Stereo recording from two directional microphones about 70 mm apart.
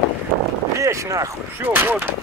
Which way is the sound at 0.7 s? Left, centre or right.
Right.